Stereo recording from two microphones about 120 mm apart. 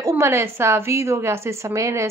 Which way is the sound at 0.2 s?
20° right (ahead or behind).